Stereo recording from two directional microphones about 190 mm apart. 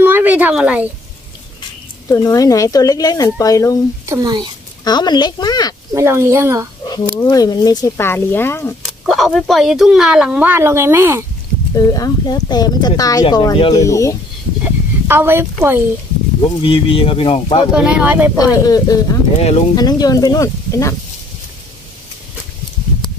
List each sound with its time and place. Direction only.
0.0 s a sound: 10° right (ahead or behind)
2.0 s speech: 15° left (ahead or behind)
4.0 s a child's voice: 15° right (ahead or behind)
4.8 s speech: 20° left (ahead or behind)
5.9 s speech: 15° right (ahead or behind)
7.2 s speech: 20° left (ahead or behind)
8.8 s speech: centre (ahead or behind)
11.7 s speech: 20° left (ahead or behind)
14.6 s speech: 10° right (ahead or behind)
16.4 s speech: 30° left (ahead or behind)
17.7 s speech: 5° right (ahead or behind)
18.4 s speech: 20° left (ahead or behind)